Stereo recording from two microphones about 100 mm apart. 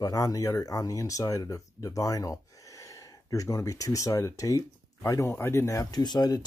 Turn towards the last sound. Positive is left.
turn(degrees=45)  # may be behind; listen again after turning